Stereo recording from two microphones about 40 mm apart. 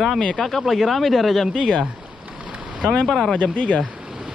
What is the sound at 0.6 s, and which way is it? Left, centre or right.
Speech, centre.